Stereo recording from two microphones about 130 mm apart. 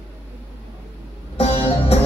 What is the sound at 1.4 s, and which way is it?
Music, 50° left (ahead or behind).